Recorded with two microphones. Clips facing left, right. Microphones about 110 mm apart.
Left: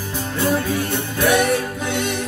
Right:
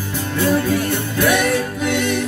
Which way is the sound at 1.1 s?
20° left (ahead or behind).